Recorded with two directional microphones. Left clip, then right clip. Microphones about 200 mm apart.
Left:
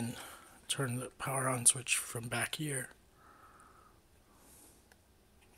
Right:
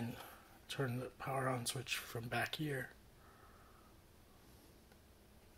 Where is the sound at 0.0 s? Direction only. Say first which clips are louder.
Left 5 dB; 50° left (ahead or behind).